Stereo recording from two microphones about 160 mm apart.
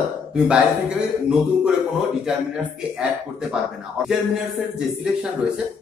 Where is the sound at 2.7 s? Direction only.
5° right (ahead or behind).